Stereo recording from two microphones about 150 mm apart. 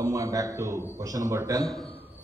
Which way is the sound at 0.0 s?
20° right (ahead or behind).